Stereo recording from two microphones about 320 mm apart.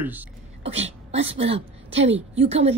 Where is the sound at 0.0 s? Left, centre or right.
Centre.